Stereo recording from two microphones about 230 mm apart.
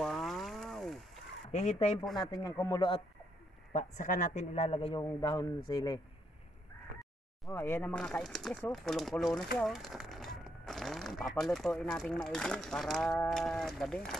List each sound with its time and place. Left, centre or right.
0.0 s a sound: centre
1.5 s a man's voice: left
2.1 s a man's voice: centre
3.7 s a man's voice: left; by 5.9 s centre
7.5 s speech: centre